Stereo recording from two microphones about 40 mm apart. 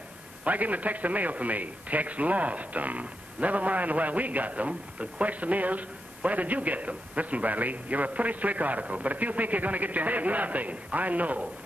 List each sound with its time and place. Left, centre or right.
0.4 s a man's voice: right